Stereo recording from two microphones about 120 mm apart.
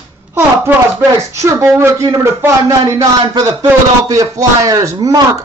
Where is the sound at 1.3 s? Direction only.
25° right (ahead or behind).